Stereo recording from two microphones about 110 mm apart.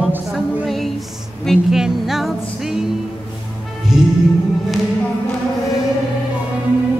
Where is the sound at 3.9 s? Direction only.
5° right (ahead or behind).